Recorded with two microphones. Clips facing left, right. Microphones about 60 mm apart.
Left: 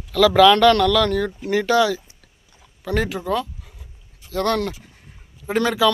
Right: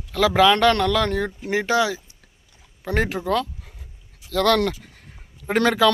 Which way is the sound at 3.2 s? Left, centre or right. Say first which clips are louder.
Right 1 dB; right.